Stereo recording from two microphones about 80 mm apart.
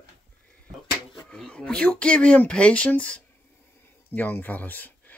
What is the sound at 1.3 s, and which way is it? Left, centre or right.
Speech, centre.